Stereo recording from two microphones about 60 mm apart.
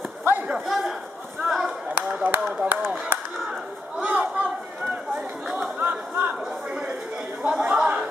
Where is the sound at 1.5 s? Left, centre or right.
Centre.